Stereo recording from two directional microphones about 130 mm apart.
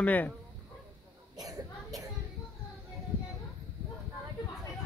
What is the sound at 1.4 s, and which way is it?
Cough, 30° right (ahead or behind).